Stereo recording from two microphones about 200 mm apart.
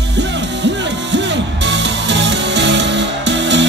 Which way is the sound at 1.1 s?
60° right (ahead or behind).